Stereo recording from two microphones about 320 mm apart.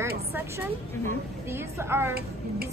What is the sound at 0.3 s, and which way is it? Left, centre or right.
A woman's voice, centre.